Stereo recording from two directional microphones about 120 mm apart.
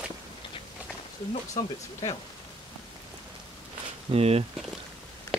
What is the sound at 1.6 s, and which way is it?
Speech, 50° left (ahead or behind).